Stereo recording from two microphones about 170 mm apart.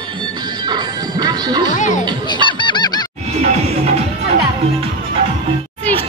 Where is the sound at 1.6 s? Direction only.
45° left (ahead or behind).